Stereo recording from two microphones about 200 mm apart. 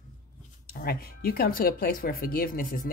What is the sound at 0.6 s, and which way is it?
Speech, 50° left (ahead or behind).